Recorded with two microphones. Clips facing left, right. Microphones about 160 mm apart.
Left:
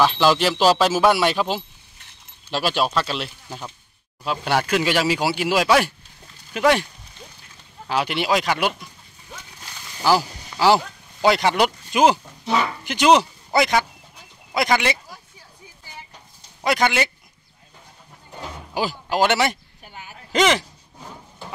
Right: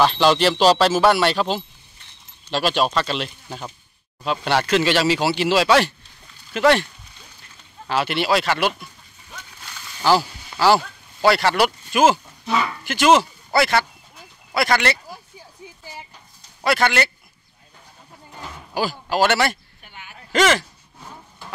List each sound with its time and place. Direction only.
0.0 s speech: 5° left (ahead or behind)
7.9 s speech: 15° left (ahead or behind)
9.3 s a sound: 15° left (ahead or behind)
10.6 s speech: 15° left (ahead or behind)
16.6 s speech: 15° left (ahead or behind)
18.7 s speech: 15° left (ahead or behind)
19.8 s a sound: 35° left (ahead or behind)
20.3 s speech: 15° left (ahead or behind)